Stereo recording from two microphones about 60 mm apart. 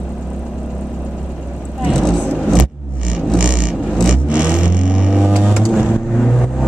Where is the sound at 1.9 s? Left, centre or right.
Centre.